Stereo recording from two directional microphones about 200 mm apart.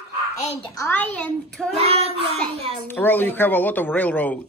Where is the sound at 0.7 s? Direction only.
10° left (ahead or behind).